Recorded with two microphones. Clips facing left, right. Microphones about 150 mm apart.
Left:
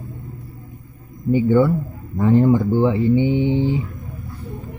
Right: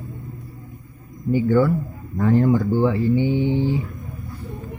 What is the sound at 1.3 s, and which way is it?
Speech, 20° left (ahead or behind).